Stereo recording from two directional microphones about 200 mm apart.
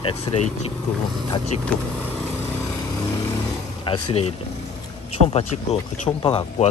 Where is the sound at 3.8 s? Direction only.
25° left (ahead or behind).